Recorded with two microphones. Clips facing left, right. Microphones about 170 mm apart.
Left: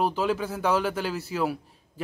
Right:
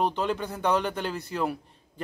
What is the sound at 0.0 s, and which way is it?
A man's voice, 5° left (ahead or behind).